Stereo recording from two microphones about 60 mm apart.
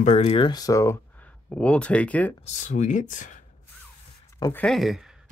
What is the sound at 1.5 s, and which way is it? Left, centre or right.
Speech, centre.